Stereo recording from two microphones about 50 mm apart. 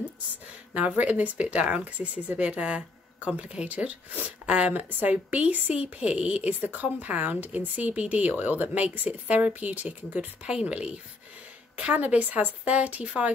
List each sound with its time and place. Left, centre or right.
0.7 s a woman's voice: right
5.1 s a woman's voice: right
11.7 s speech: right